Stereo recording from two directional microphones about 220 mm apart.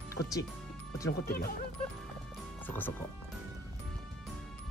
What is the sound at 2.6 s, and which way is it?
Speech, 10° left (ahead or behind).